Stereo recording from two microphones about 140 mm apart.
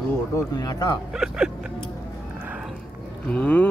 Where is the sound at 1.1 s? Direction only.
5° right (ahead or behind).